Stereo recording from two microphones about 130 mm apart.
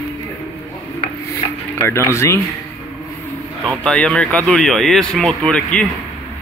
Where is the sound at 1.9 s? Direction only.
20° left (ahead or behind).